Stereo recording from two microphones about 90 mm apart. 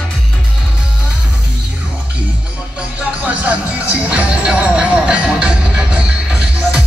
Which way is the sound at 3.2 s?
15° right (ahead or behind).